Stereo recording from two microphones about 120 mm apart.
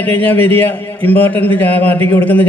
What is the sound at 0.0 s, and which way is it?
A man's voice, 15° left (ahead or behind).